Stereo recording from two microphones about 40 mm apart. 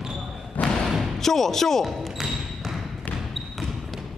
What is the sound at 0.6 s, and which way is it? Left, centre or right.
Thump, left.